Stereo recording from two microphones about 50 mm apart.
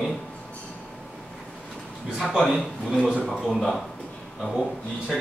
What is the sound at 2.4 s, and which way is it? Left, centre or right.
A man's voice, centre.